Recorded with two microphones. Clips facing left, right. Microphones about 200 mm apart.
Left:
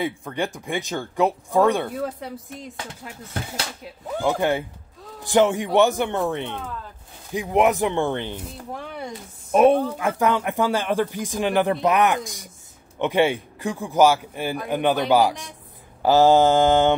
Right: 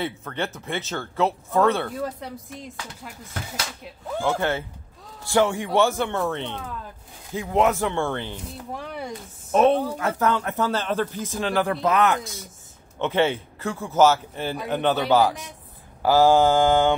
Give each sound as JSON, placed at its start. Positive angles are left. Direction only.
{"t": 0.0, "sound": "speech", "side_deg": 15}
{"t": 2.0, "sound": "speech", "side_deg": 0}
{"t": 4.2, "sound": "speech", "side_deg": 15}
{"t": 8.7, "sound": "speech", "side_deg": 0}
{"t": 9.5, "sound": "speech", "side_deg": 10}
{"t": 16.0, "sound": "mantra", "side_deg": 20}